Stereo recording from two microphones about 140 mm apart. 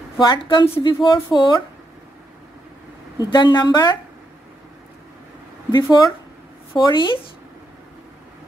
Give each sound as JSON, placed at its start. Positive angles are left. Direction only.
{"t": 0.3, "sound": "speech", "side_deg": 35}
{"t": 3.2, "sound": "speech", "side_deg": 35}
{"t": 5.7, "sound": "speech", "side_deg": 25}